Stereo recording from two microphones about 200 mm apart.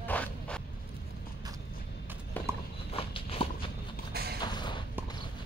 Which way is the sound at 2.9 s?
30° left (ahead or behind).